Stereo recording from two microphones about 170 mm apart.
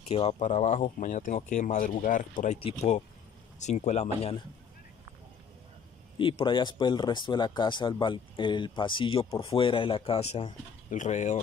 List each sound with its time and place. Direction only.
0.1 s speech: 35° left (ahead or behind)
6.1 s speech: 30° left (ahead or behind); by 11.3 s 45° left (ahead or behind)